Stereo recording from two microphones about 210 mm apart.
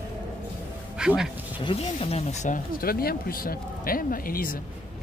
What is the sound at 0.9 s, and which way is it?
Speech, 5° right (ahead or behind).